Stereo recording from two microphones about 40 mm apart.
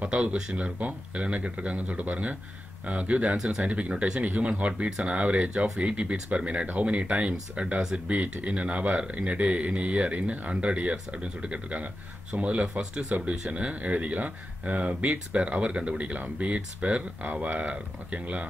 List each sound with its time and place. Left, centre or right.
0.1 s speech: right
0.7 s speech: right
3.9 s speech: right
4.2 s speech: right
10.5 s speech: right